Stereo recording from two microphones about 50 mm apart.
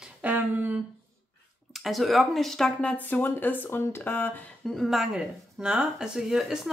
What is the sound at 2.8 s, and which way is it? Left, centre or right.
Speech, left.